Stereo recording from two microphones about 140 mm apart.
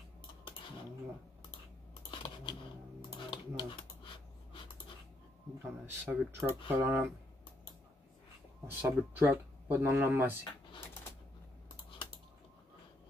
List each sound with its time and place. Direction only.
2.0 s a sound: 35° left (ahead or behind)
3.3 s typing: 35° left (ahead or behind)
5.6 s speech: 15° right (ahead or behind)
8.6 s speech: 15° right (ahead or behind)